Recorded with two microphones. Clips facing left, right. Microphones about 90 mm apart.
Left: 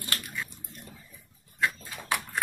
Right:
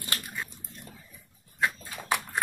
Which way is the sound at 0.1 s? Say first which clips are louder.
Even; 25° right (ahead or behind).